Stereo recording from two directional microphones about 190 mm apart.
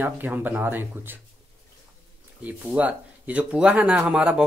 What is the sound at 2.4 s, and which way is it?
Speech, 10° right (ahead or behind).